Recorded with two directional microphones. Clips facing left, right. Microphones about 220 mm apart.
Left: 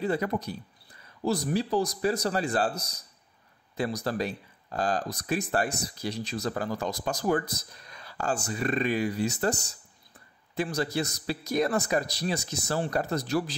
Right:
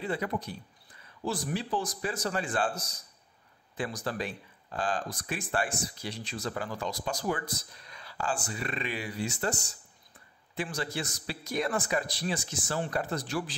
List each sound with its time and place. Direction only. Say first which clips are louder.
0.0 s speech: left 4 dB; 40° left (ahead or behind)